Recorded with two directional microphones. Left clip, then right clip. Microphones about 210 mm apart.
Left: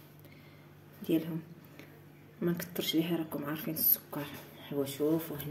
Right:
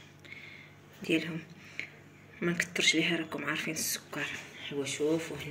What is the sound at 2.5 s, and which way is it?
A woman's voice, 25° left (ahead or behind).